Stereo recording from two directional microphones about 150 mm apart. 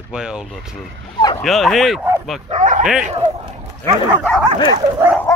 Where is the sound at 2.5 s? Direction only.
55° right (ahead or behind).